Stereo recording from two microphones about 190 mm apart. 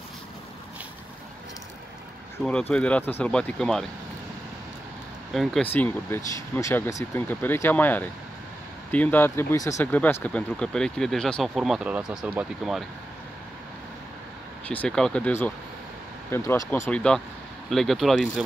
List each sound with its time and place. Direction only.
2.4 s speech: 5° left (ahead or behind)
5.3 s speech: centre (ahead or behind)
14.7 s speech: 5° left (ahead or behind)